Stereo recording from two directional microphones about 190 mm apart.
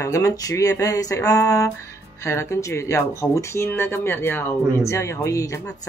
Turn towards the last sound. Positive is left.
turn(degrees=15)  # may be behind; listen again after turning